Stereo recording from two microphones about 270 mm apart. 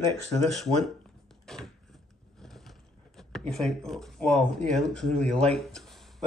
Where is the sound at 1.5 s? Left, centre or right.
Centre.